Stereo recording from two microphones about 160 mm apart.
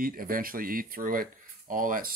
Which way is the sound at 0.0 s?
65° right (ahead or behind).